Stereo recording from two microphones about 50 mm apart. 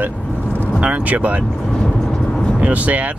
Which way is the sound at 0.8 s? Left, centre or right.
Right.